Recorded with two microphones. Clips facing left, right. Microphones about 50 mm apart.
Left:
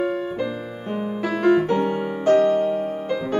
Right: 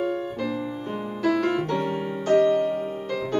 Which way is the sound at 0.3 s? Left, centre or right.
Centre.